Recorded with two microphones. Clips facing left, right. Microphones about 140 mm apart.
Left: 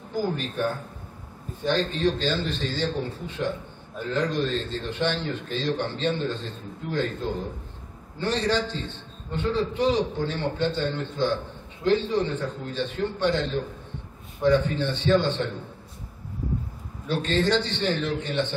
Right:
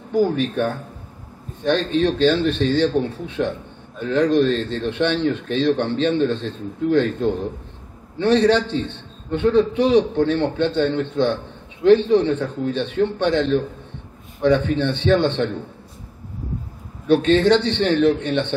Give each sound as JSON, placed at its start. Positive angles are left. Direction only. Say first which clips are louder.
{"t": 0.1, "sound": "a man's voice", "louder": "right 9 dB", "side_deg": -65}
{"t": 17.1, "sound": "a man's voice", "louder": "right 9 dB", "side_deg": -65}